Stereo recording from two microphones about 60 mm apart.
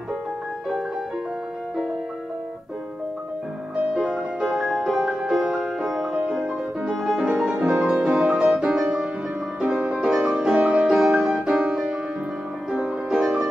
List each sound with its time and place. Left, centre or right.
3.7 s music: centre
9.8 s music: centre
10.5 s music: right
10.8 s music: centre
11.1 s music: centre